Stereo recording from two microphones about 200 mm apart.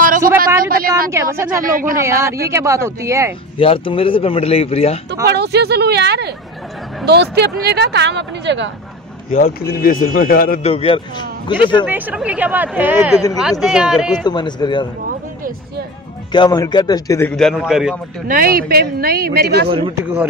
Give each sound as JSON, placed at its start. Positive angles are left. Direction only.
{"t": 0.7, "sound": "speech", "side_deg": -45}
{"t": 1.1, "sound": "speech", "side_deg": -15}
{"t": 3.5, "sound": "speech", "side_deg": 25}
{"t": 5.3, "sound": "speech", "side_deg": -55}
{"t": 9.3, "sound": "speech", "side_deg": 45}
{"t": 10.6, "sound": "speech", "side_deg": 30}
{"t": 11.8, "sound": "speech", "side_deg": -10}
{"t": 14.2, "sound": "speech", "side_deg": 20}
{"t": 16.3, "sound": "speech", "side_deg": 20}
{"t": 17.3, "sound": "speech", "side_deg": 5}
{"t": 18.2, "sound": "speech", "side_deg": -45}
{"t": 20.0, "sound": "speech", "side_deg": -10}